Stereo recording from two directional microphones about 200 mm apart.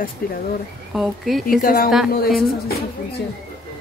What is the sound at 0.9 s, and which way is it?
Speech, centre (ahead or behind).